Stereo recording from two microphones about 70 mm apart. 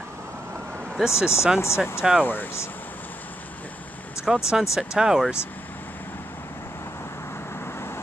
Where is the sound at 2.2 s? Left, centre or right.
Left.